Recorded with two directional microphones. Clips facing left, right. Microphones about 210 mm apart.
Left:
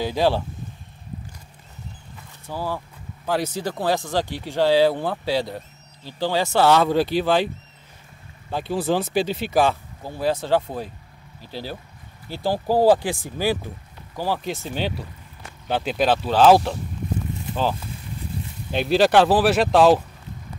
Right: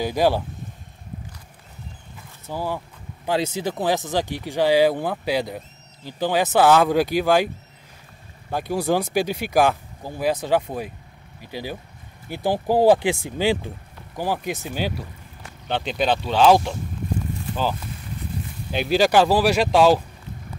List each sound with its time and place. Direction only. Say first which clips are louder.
0.0 s speech: right 1 dB; 15° right (ahead or behind)
2.5 s speech: right 1 dB; 15° right (ahead or behind)
8.5 s speech: right 1 dB; 10° right (ahead or behind); by 16.7 s 5° left (ahead or behind)
18.7 s speech: left 1 dB; centre (ahead or behind)